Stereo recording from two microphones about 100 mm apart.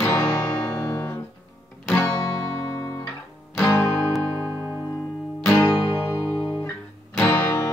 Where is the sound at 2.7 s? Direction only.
35° left (ahead or behind).